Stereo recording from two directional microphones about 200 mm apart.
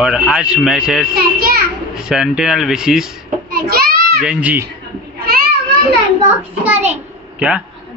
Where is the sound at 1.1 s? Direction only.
50° right (ahead or behind).